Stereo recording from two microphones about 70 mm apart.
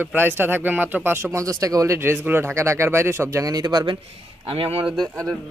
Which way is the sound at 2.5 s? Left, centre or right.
Right.